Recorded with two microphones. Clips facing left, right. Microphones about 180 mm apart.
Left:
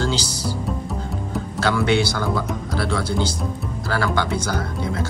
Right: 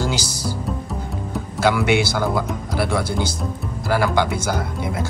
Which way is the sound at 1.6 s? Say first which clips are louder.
Right 2 dB; 10° right (ahead or behind).